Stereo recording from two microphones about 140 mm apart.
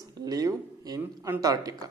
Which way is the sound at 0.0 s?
25° right (ahead or behind).